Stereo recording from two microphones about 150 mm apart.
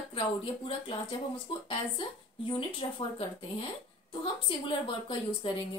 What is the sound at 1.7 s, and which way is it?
A woman's voice, 35° left (ahead or behind).